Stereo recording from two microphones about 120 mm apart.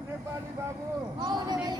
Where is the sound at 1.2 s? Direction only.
35° right (ahead or behind).